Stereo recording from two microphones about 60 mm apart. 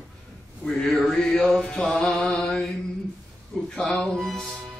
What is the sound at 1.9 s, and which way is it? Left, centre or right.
Music, centre.